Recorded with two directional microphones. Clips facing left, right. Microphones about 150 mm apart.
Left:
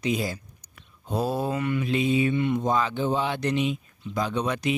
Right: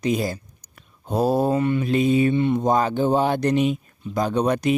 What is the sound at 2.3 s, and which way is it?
Speech, 35° right (ahead or behind).